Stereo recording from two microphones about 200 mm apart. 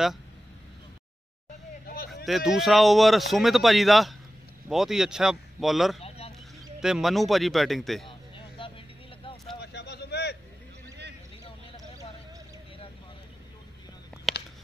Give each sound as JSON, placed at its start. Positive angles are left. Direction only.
{"t": 2.2, "sound": "speech", "side_deg": 0}
{"t": 5.9, "sound": "a sound", "side_deg": 30}
{"t": 6.8, "sound": "speech", "side_deg": 0}
{"t": 8.1, "sound": "vehicle", "side_deg": 25}
{"t": 9.6, "sound": "vehicle", "side_deg": 55}
{"t": 14.3, "sound": "a sound", "side_deg": 0}